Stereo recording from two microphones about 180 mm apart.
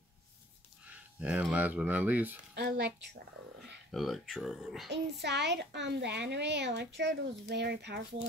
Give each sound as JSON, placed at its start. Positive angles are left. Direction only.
{"t": 0.8, "sound": "speech", "side_deg": -5}
{"t": 2.5, "sound": "speech", "side_deg": -65}
{"t": 3.9, "sound": "speech", "side_deg": 0}
{"t": 5.2, "sound": "a child's voice", "side_deg": -75}